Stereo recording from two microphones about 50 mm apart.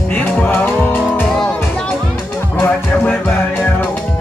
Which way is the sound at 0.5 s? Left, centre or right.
Left.